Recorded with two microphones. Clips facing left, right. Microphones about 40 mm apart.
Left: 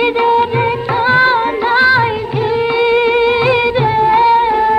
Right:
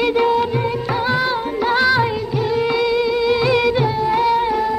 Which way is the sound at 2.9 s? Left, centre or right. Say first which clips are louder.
Left 6 dB; left.